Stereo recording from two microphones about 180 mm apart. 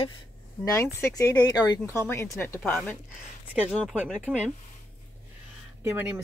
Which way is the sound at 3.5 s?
10° right (ahead or behind).